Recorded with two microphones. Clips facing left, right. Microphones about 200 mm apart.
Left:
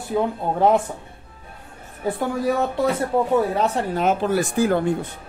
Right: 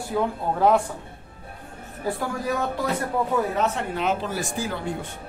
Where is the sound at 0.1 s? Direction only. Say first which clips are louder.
Left 3 dB; 20° left (ahead or behind).